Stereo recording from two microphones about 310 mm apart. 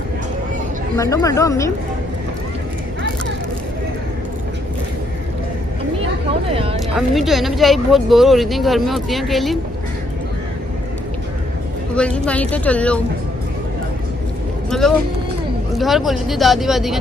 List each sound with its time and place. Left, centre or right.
0.9 s speech: centre
6.5 s a sound: centre
7.0 s speech: centre
11.9 s speech: centre
14.7 s speech: centre